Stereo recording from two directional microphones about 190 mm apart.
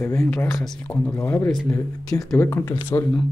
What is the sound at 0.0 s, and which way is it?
Speech, 10° left (ahead or behind).